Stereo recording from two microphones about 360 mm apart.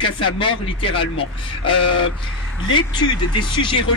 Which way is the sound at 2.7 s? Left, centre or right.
Centre.